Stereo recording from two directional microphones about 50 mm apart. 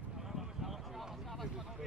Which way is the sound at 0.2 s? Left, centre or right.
Centre.